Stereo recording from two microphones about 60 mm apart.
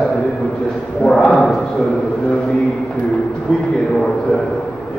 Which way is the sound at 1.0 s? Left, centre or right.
Centre.